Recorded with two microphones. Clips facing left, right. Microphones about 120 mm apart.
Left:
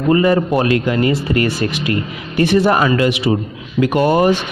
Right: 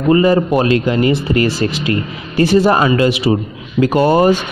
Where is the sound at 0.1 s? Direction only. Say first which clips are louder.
Right 2 dB; 25° right (ahead or behind).